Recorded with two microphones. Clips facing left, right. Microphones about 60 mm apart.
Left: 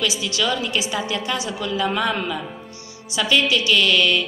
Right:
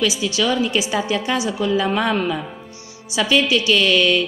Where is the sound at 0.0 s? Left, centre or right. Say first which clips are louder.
Right 3 dB; centre.